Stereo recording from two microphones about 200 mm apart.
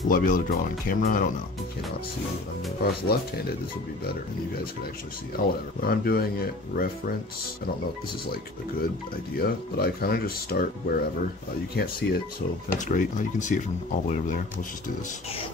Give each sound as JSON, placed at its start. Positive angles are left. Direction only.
{"t": 0.1, "sound": "speech", "side_deg": 45}
{"t": 2.8, "sound": "speech", "side_deg": 50}
{"t": 5.8, "sound": "speech", "side_deg": 50}
{"t": 9.4, "sound": "speech", "side_deg": 50}